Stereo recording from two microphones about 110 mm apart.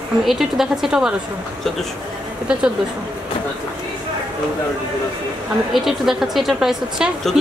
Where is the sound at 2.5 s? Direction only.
10° right (ahead or behind).